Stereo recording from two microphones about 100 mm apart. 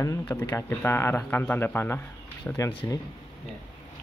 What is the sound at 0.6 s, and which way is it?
Speech, 25° left (ahead or behind).